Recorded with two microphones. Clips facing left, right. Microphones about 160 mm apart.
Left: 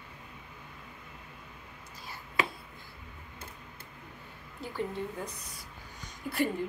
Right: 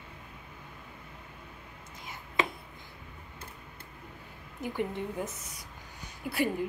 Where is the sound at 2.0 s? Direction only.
20° right (ahead or behind).